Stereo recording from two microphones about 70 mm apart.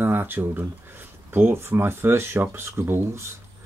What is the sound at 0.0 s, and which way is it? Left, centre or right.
Speech, right.